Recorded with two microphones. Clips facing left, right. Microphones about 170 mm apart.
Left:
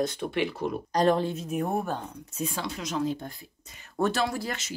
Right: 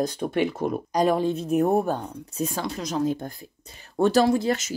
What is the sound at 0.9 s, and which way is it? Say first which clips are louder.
Speech: right 1 dB; 10° right (ahead or behind).